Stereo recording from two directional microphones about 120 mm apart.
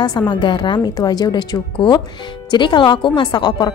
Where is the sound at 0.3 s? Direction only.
40° left (ahead or behind).